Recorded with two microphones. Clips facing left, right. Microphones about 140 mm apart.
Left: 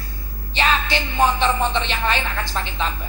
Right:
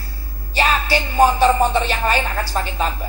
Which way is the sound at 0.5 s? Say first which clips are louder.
Right 2 dB; 10° right (ahead or behind).